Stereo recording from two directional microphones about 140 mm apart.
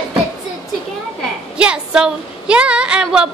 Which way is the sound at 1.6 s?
5° right (ahead or behind).